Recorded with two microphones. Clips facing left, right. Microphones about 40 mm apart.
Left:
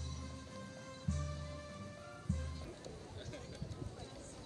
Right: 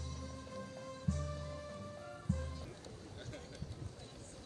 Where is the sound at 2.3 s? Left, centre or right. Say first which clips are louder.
Right 3 dB; right.